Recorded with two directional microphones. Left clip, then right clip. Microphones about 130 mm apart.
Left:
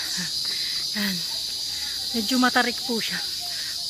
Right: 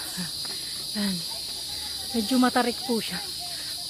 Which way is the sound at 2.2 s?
10° left (ahead or behind).